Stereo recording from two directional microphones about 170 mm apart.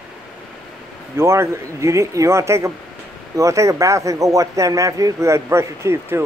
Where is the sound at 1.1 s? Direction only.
15° right (ahead or behind).